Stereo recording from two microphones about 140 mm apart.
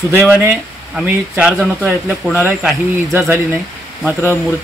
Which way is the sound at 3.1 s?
15° right (ahead or behind).